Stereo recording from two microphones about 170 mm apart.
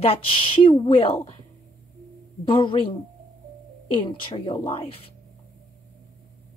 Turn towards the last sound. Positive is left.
turn(degrees=30)  # may be behind; listen again after turning